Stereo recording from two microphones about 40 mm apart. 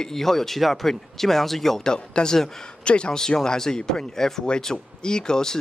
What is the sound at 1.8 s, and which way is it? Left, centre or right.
Speech, left.